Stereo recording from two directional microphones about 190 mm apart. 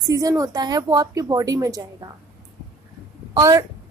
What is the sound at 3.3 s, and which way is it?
Speech, 20° right (ahead or behind).